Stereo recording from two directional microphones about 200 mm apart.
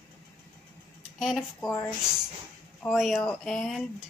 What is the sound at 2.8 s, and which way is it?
Speech, centre (ahead or behind).